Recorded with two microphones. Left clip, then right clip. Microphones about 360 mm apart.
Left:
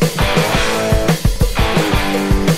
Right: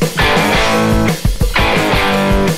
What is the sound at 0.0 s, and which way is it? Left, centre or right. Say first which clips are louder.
Music: right 3 dB; centre.